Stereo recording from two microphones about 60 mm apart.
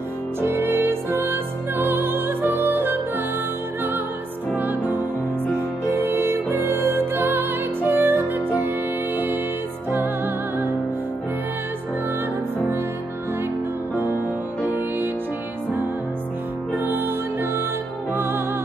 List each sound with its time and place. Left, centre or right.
0.4 s music: right
5.9 s music: right
14.6 s music: right
16.8 s music: right